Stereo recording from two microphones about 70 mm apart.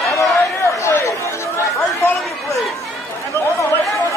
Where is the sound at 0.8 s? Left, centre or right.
Left.